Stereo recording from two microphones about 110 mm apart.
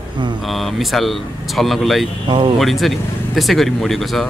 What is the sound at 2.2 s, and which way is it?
Speech, 50° right (ahead or behind).